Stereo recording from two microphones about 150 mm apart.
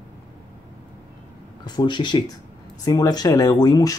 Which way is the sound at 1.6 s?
30° left (ahead or behind).